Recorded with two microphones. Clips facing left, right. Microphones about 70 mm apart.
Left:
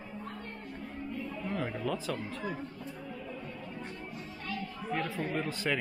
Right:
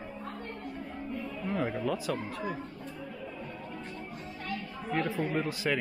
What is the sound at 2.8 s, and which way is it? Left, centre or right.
Music, right.